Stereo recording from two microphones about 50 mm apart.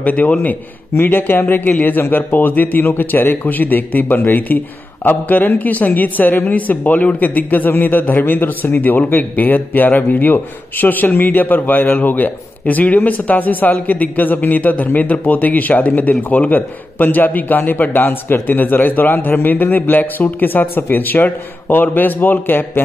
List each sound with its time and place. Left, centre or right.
0.0 s a man's voice: left